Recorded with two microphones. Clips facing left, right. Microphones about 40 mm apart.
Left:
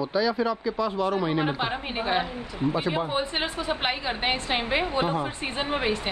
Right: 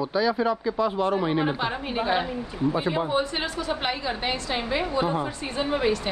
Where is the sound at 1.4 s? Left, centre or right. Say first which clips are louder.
Right 1 dB; centre.